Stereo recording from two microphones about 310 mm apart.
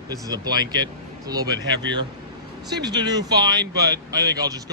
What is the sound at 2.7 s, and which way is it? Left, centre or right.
Speech, centre.